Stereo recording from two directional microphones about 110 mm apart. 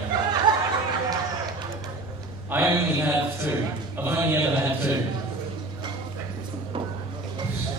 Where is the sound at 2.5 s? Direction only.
25° right (ahead or behind).